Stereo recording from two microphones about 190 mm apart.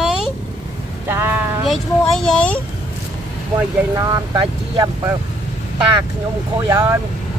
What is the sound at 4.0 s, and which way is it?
Speech, 20° right (ahead or behind).